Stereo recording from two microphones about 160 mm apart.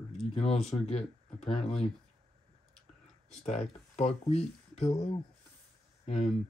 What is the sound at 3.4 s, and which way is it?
Speech, 40° left (ahead or behind).